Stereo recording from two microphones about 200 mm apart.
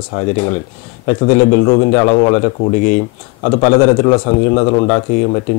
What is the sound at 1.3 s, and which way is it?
A man's voice, 20° left (ahead or behind).